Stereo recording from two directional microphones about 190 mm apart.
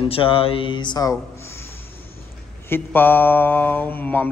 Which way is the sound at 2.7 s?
10° left (ahead or behind).